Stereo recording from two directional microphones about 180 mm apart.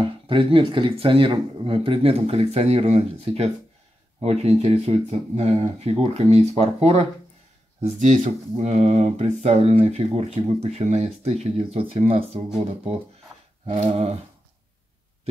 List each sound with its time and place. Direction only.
0.3 s speech: 30° right (ahead or behind)
13.7 s speech: 35° right (ahead or behind)